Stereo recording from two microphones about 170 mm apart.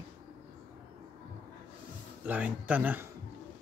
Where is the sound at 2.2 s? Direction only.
10° right (ahead or behind).